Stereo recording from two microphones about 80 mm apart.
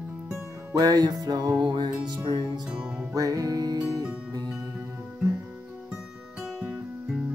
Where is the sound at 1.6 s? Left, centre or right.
Right.